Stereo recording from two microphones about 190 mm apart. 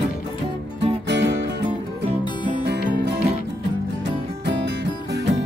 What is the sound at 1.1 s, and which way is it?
Music, 65° right (ahead or behind).